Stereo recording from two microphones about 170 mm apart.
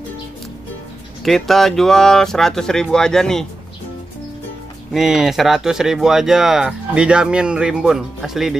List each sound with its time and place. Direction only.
1.2 s speech: centre (ahead or behind)
4.9 s speech: centre (ahead or behind)